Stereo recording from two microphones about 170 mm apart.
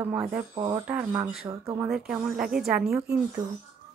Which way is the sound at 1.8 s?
5° right (ahead or behind).